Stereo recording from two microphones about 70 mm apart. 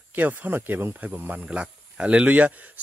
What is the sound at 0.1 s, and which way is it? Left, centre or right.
Speech, right.